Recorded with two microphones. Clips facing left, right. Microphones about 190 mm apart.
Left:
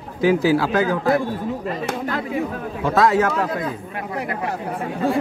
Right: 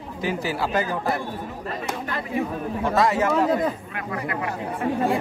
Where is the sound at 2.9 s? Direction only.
90° left.